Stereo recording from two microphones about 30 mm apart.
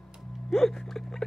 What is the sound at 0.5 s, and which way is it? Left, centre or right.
Music, centre.